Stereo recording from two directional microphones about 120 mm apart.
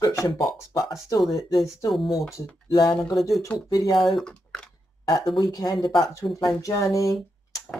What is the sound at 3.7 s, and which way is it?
Speech, 30° left (ahead or behind).